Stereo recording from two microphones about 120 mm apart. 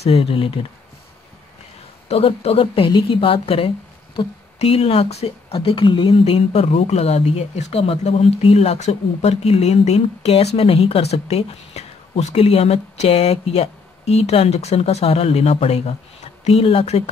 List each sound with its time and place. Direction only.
0.0 s speech: 50° left (ahead or behind)
2.0 s a woman's voice: 55° left (ahead or behind)